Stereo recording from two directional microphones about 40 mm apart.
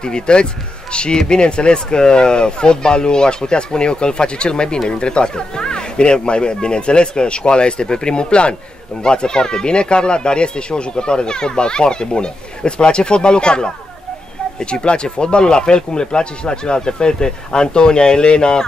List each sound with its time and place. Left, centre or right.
0.0 s speech: left